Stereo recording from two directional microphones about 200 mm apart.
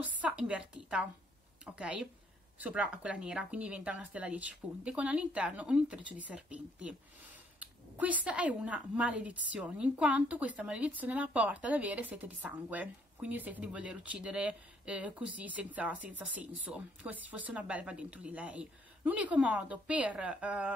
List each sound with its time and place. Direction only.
0.0 s a woman's voice: 5° right (ahead or behind)